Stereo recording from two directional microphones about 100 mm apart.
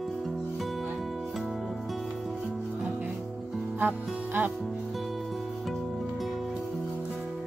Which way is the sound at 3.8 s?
20° right (ahead or behind).